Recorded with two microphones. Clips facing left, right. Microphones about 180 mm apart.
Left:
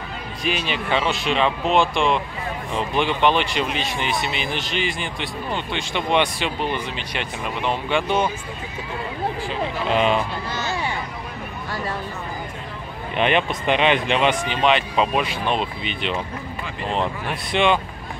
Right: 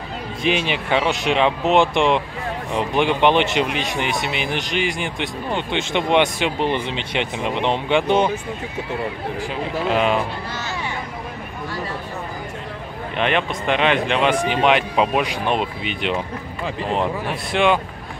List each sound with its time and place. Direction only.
0.7 s speech: 15° right (ahead or behind)
9.5 s speech: 5° right (ahead or behind)
13.1 s speech: centre (ahead or behind)
14.5 s speech: 10° right (ahead or behind)